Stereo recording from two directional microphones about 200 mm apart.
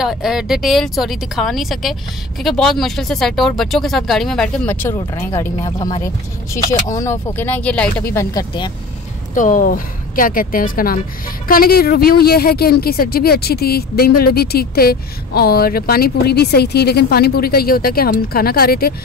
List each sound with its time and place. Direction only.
0.0 s speech: centre (ahead or behind)
4.9 s speech: 15° left (ahead or behind)
8.1 s speech: 15° left (ahead or behind)
9.3 s speech: 40° left (ahead or behind)